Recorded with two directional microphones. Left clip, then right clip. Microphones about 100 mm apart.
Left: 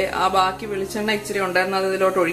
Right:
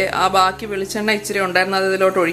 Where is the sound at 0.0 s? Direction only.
35° right (ahead or behind).